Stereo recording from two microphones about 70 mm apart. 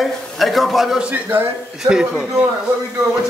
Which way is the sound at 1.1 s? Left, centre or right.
Right.